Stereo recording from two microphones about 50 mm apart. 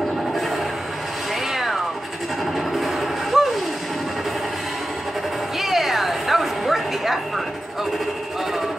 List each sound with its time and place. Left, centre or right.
1.5 s cat: centre
2.7 s music: centre
5.6 s music: centre